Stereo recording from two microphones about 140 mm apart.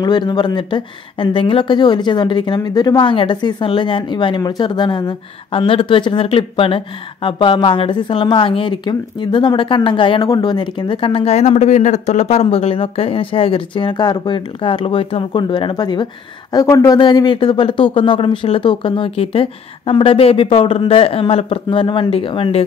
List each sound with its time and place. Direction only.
0.0 s speech: 30° left (ahead or behind)